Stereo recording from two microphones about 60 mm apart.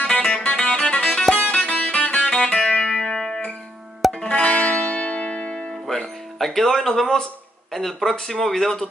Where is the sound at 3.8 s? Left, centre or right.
Centre.